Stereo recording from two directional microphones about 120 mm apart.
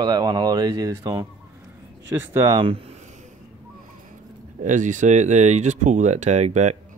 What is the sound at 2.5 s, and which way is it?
Speech, 50° right (ahead or behind).